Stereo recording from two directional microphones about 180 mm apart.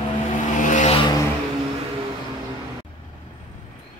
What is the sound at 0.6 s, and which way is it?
Vehicle, 45° left (ahead or behind).